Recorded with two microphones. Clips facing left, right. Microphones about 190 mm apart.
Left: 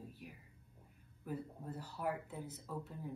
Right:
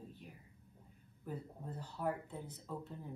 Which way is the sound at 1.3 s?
5° left (ahead or behind).